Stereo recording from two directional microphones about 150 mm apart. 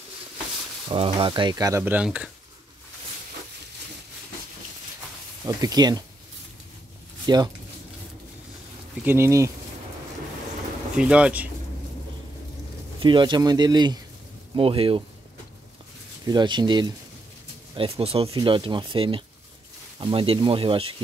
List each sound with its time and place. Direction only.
0.8 s speech: 35° right (ahead or behind); by 2.0 s 15° right (ahead or behind)
2.0 s speech: centre (ahead or behind)
5.4 s speech: 25° right (ahead or behind)
7.3 s speech: 30° right (ahead or behind)
9.0 s speech: 15° right (ahead or behind)
11.0 s speech: 5° right (ahead or behind)
13.0 s speech: 30° right (ahead or behind)
16.3 s speech: 30° right (ahead or behind)